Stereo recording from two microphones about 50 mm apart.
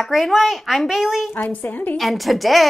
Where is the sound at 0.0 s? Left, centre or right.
Centre.